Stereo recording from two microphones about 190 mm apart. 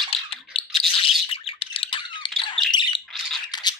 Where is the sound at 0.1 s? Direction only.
30° left (ahead or behind).